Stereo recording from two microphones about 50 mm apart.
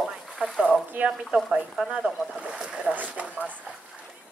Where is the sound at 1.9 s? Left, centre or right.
Centre.